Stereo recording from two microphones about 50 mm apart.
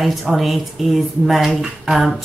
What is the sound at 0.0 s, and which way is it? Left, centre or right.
A woman's voice, centre.